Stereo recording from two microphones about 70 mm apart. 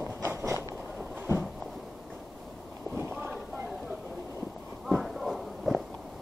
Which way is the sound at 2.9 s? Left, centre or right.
Right.